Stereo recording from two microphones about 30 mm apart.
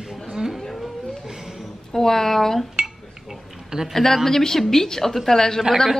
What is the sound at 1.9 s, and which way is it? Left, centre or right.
Speech, centre.